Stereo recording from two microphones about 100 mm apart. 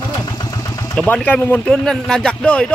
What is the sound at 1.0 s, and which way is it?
Speech, 15° left (ahead or behind).